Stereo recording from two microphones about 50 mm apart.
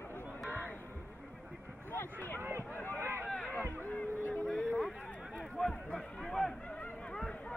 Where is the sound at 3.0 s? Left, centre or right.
Right.